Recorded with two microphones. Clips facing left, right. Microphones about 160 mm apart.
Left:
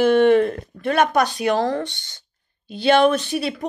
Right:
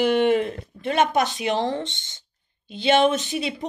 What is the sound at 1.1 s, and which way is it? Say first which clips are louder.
Speech: left 3 dB; 20° right (ahead or behind).